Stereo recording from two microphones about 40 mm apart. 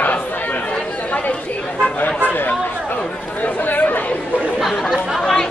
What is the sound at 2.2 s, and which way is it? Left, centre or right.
Chatter, left.